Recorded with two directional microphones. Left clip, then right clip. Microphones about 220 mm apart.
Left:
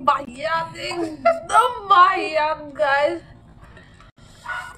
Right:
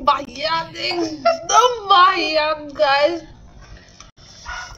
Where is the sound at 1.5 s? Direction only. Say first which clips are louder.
Right 4 dB; 15° right (ahead or behind).